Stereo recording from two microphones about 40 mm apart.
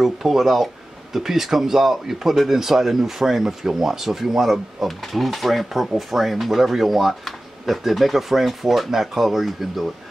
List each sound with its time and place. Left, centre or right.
0.0 s speech: centre